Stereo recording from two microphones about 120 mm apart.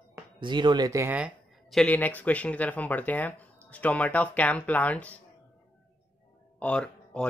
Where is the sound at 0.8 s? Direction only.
25° right (ahead or behind).